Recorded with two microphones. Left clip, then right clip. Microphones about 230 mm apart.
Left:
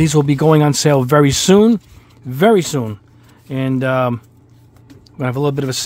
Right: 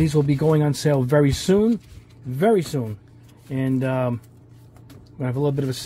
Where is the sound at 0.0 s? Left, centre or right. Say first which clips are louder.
Left 6 dB; left.